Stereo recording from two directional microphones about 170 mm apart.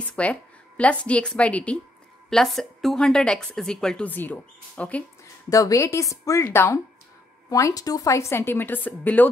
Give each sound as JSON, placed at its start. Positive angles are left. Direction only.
{"t": 0.1, "sound": "a woman's voice", "side_deg": 10}
{"t": 5.5, "sound": "speech", "side_deg": 20}